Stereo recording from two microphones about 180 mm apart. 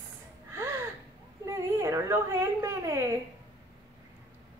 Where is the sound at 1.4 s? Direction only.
15° right (ahead or behind).